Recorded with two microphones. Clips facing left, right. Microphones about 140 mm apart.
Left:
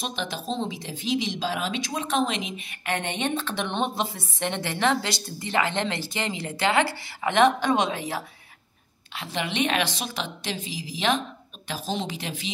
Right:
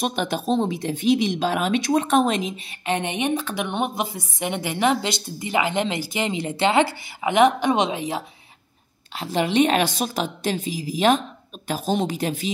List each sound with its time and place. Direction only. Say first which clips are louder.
0.0 s speech: right 7 dB; 55° right (ahead or behind)
2.9 s a woman's voice: right 4 dB; 15° right (ahead or behind)
9.2 s a woman's voice: right 8 dB; 40° right (ahead or behind)